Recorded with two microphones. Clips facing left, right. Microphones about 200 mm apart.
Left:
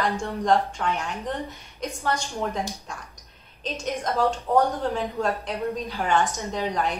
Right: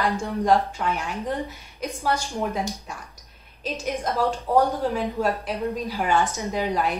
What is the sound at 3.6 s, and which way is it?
A woman's voice, centre (ahead or behind).